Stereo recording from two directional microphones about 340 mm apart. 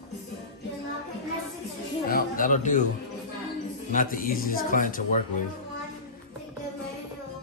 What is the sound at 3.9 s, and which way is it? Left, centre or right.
A man's voice, left.